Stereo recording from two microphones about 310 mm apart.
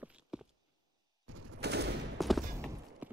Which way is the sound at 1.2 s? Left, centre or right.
Right.